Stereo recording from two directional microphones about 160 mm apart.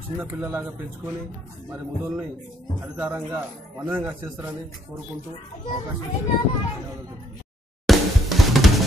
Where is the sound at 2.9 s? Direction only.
15° right (ahead or behind).